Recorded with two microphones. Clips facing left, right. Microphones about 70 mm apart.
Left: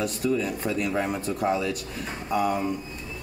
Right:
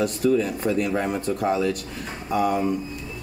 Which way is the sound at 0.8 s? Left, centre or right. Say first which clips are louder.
Right 3 dB; centre.